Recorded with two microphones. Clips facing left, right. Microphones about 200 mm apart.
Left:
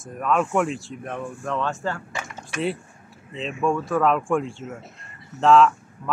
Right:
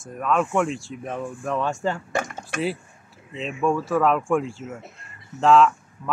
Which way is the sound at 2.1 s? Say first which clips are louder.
Right 5 dB; 50° right (ahead or behind).